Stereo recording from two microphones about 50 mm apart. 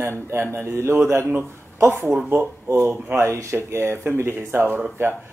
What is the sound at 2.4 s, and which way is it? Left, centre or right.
Speech, right.